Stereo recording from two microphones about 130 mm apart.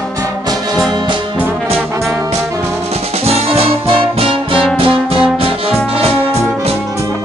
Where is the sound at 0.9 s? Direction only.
35° right (ahead or behind).